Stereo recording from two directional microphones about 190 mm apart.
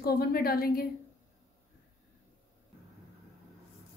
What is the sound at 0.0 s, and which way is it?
Speech, 55° left (ahead or behind).